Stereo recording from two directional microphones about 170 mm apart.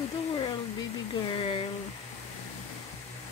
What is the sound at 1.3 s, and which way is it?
Speech, 30° left (ahead or behind).